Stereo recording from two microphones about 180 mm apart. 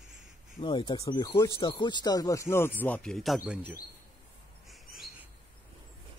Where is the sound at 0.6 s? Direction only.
25° left (ahead or behind); by 3.8 s 5° right (ahead or behind).